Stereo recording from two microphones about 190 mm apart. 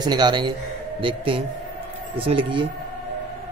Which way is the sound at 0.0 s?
20° right (ahead or behind).